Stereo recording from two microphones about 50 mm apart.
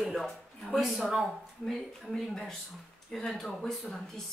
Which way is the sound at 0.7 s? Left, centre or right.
Centre.